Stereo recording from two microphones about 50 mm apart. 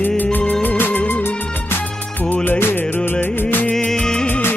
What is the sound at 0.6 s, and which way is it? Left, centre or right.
Music, left.